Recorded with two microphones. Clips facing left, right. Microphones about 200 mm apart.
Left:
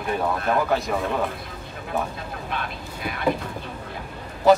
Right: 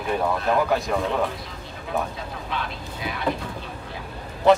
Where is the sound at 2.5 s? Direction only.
50° left (ahead or behind).